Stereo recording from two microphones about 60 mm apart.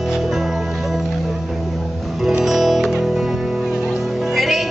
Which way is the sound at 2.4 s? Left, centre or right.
Centre.